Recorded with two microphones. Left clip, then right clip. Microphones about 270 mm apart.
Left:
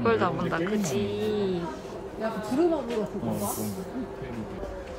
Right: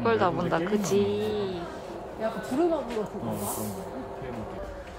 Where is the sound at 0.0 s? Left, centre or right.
Centre.